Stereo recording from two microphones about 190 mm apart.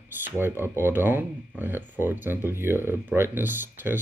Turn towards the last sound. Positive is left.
turn(degrees=-10)  # may be behind; listen again after turning